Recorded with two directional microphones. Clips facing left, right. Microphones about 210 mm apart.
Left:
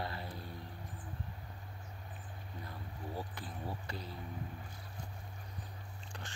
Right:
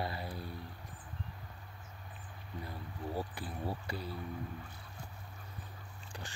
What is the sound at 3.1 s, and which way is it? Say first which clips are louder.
Speech: right 4 dB; 10° right (ahead or behind).